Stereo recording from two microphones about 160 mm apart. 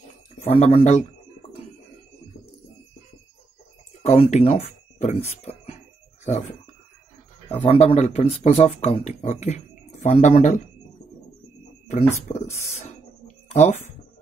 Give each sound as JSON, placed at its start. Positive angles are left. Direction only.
{"t": 0.5, "sound": "speech", "side_deg": 40}
{"t": 4.0, "sound": "speech", "side_deg": 45}
{"t": 7.4, "sound": "speech", "side_deg": 35}
{"t": 11.9, "sound": "speech", "side_deg": 45}